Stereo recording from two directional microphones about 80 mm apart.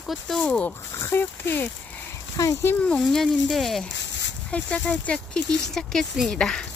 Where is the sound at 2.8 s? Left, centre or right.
Centre.